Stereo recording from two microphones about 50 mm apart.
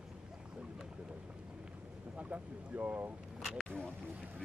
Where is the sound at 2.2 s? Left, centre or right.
Right.